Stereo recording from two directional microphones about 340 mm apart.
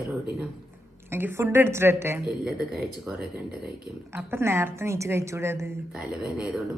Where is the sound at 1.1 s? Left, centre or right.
Centre.